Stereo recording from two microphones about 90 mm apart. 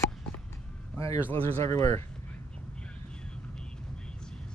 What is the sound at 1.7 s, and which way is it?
Speech, 35° left (ahead or behind).